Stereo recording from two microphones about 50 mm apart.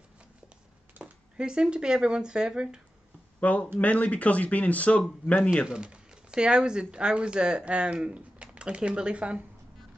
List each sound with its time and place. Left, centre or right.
1.0 s a sound: right
1.3 s speech: centre
3.3 s speech: left
5.7 s speech: centre